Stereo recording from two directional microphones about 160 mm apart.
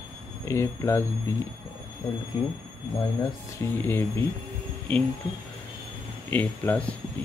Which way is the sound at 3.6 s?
15° left (ahead or behind).